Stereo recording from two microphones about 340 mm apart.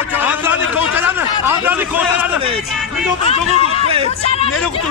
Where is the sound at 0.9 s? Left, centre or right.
Centre.